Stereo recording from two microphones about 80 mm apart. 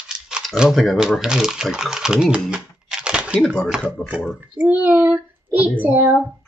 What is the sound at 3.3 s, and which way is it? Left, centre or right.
Speech, centre.